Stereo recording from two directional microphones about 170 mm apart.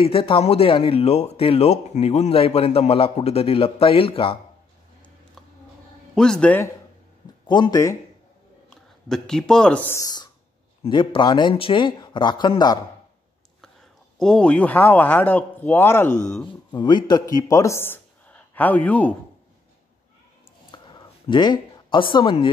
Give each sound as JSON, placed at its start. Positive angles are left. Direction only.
{"t": 0.0, "sound": "speech", "side_deg": 30}
{"t": 6.1, "sound": "a man's voice", "side_deg": 5}
{"t": 7.4, "sound": "speech", "side_deg": 25}
{"t": 8.6, "sound": "speech", "side_deg": 5}
{"t": 14.1, "sound": "speech", "side_deg": 5}
{"t": 16.4, "sound": "speech", "side_deg": 25}
{"t": 20.7, "sound": "a sound", "side_deg": 25}